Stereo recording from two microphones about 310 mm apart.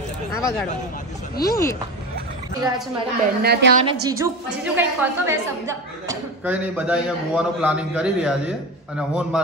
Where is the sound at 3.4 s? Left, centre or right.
Right.